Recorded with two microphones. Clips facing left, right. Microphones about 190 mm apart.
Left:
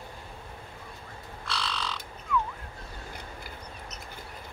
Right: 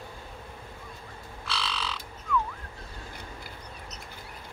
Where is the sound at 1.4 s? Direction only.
5° right (ahead or behind).